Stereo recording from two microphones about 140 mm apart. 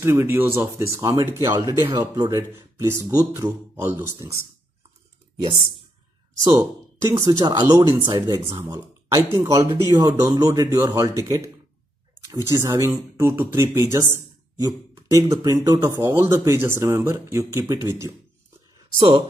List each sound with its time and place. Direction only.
0.0 s a man's voice: 20° right (ahead or behind)
7.1 s a man's voice: 25° right (ahead or behind)